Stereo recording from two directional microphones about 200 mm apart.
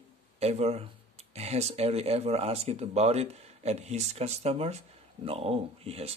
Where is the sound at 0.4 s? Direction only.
30° right (ahead or behind).